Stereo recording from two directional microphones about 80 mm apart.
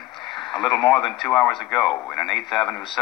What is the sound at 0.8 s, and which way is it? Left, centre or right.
Speech, left.